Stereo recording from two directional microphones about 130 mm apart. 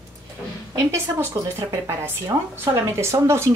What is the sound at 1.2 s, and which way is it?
A woman's voice, 20° right (ahead or behind).